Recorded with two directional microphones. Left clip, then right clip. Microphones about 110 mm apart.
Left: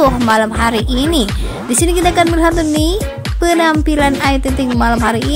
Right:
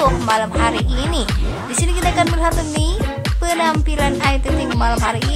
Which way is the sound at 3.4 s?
50° left (ahead or behind).